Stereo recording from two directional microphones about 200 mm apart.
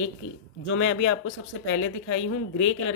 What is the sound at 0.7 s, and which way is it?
A man's voice, 85° left.